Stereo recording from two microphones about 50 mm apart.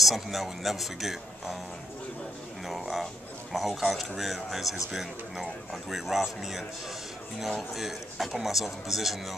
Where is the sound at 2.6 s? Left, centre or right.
Centre.